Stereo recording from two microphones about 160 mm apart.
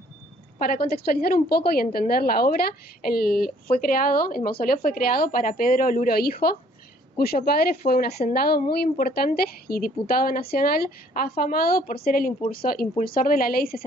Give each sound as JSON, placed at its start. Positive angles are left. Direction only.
{"t": 0.6, "sound": "speech", "side_deg": 65}